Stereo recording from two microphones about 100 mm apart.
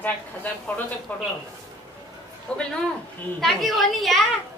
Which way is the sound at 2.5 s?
10° left (ahead or behind).